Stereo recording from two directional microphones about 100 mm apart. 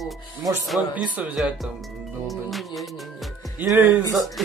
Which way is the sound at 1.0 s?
15° right (ahead or behind).